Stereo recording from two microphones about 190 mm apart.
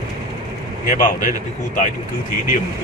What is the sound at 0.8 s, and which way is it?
Speech, 45° left (ahead or behind).